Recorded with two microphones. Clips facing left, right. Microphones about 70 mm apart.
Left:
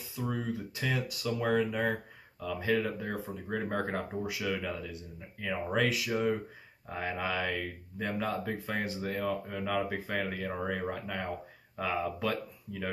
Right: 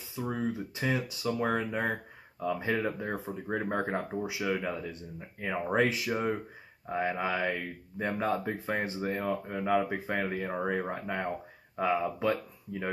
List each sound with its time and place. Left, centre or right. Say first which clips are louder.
0.3 s speech: right 3 dB; centre